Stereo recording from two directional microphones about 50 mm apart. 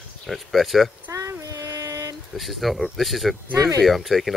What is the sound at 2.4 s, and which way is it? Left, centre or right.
Speech, centre.